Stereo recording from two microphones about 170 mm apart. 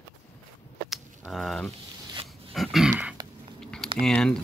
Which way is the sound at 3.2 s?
25° right (ahead or behind).